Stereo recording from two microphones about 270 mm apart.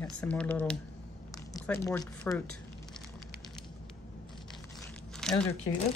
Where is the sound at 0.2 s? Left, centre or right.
Centre.